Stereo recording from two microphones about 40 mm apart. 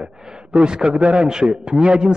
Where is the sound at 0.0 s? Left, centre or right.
Right.